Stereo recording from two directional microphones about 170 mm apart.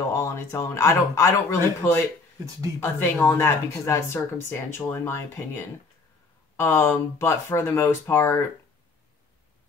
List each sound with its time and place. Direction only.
0.1 s speech: 15° left (ahead or behind)
6.5 s speech: 15° left (ahead or behind)